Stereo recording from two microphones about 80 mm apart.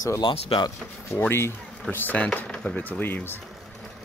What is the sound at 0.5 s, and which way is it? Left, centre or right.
Speech, left.